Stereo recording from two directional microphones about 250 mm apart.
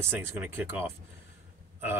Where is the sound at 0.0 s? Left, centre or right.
Centre.